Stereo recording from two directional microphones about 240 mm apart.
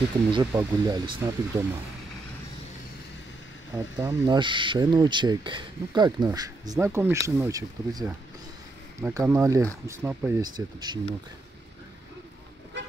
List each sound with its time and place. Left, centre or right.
0.3 s speech: centre
3.7 s speech: centre